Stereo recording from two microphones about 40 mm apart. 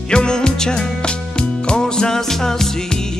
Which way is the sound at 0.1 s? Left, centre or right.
Left.